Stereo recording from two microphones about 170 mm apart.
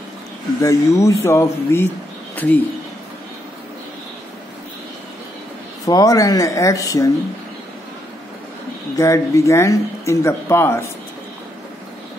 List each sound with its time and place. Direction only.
0.6 s speech: 15° left (ahead or behind)
5.9 s speech: 20° left (ahead or behind)
8.9 s speech: 20° left (ahead or behind)